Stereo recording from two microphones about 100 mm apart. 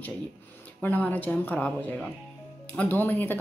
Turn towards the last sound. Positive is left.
turn(degrees=20)  # may be behind; listen again after turning